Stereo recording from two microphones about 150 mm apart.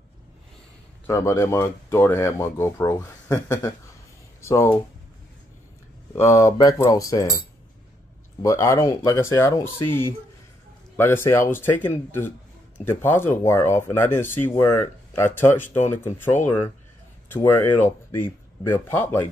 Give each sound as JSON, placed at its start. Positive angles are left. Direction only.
{"t": 1.0, "sound": "speech", "side_deg": 20}
{"t": 6.1, "sound": "speech", "side_deg": 20}